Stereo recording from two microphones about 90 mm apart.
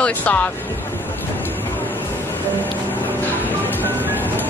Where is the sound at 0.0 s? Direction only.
20° left (ahead or behind).